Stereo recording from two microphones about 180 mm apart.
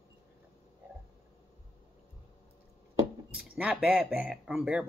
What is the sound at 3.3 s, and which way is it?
Speech, 5° right (ahead or behind).